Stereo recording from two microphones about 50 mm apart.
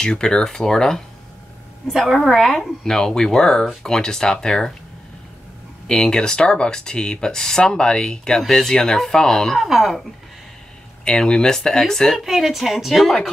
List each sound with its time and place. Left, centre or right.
0.0 s speech: centre
1.9 s a woman's voice: centre
5.9 s speech: centre
9.6 s a woman's voice: centre
11.1 s speech: centre
12.2 s a woman's voice: centre